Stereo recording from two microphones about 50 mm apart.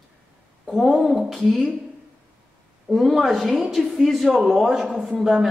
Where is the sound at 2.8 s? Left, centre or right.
Centre.